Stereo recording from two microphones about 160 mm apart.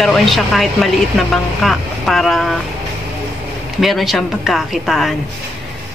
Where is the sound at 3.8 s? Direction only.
Centre (ahead or behind).